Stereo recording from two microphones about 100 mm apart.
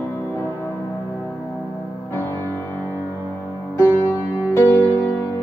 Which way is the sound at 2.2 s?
20° left (ahead or behind).